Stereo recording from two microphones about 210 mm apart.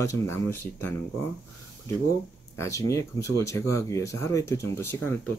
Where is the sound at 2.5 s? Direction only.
15° left (ahead or behind).